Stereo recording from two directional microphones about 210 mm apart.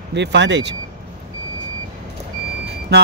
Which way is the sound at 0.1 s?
55° right (ahead or behind).